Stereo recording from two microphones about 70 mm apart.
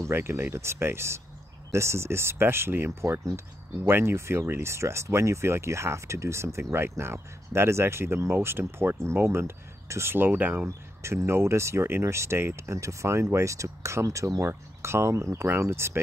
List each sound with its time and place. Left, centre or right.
0.0 s speech: right
11.0 s speech: right